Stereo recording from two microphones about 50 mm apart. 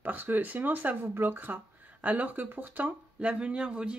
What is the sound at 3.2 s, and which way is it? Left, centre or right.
Speech, right.